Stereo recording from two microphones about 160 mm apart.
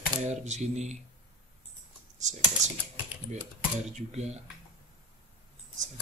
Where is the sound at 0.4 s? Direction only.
45° right (ahead or behind).